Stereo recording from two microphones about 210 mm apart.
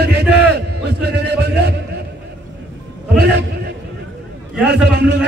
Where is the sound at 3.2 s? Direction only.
50° right (ahead or behind).